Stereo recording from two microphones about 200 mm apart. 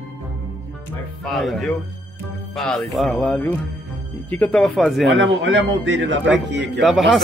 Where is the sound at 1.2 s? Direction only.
Centre (ahead or behind).